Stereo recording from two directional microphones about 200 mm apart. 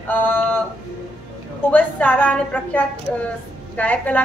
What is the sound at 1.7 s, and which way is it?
A woman's voice, 5° left (ahead or behind).